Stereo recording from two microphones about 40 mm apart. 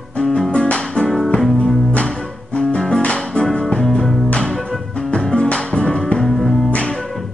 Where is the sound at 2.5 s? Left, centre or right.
Left.